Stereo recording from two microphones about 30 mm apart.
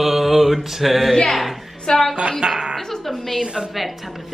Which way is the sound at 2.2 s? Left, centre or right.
Right.